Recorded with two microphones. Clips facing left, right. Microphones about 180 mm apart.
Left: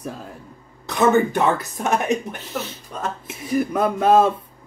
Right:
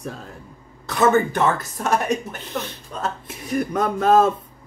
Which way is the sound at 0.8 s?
15° left (ahead or behind).